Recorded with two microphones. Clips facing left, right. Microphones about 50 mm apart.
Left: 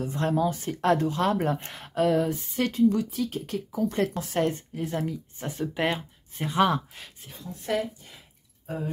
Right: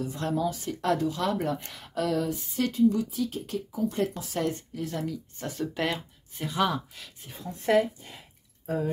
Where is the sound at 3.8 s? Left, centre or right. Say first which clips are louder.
Left 2 dB; left.